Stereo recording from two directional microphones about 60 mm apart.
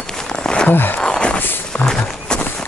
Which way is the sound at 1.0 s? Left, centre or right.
Centre.